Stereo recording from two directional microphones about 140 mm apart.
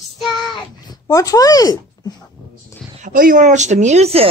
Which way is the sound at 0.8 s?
25° left (ahead or behind).